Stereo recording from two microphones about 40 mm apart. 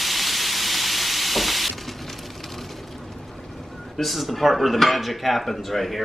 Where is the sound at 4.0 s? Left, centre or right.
Centre.